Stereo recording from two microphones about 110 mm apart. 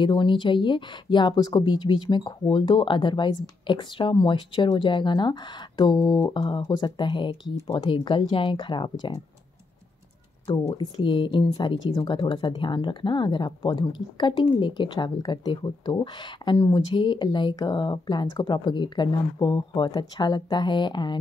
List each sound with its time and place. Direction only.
0.0 s speech: 50° left (ahead or behind)
10.8 s speech: 50° left (ahead or behind)